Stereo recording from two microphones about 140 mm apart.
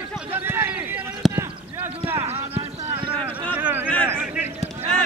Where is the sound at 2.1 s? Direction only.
40° right (ahead or behind).